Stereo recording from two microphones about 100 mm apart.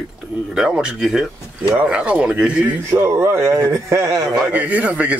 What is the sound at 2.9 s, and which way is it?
Speech, 30° right (ahead or behind).